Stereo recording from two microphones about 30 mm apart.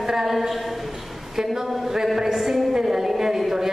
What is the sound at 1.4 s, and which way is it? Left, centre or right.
A man's voice, centre.